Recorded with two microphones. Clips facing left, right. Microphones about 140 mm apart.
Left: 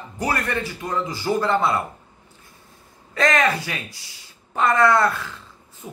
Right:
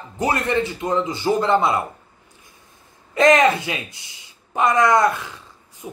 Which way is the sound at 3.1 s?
20° right (ahead or behind).